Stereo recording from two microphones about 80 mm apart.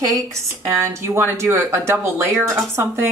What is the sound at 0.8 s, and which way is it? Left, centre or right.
Speech, right.